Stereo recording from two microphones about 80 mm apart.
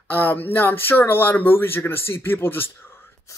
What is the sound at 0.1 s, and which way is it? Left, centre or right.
Speech, left.